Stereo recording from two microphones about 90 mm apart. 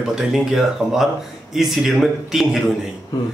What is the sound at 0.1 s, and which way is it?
A man's voice, 5° right (ahead or behind).